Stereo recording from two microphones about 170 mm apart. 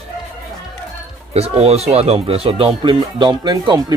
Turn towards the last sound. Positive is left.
turn(degrees=-25)  # may be behind; listen again after turning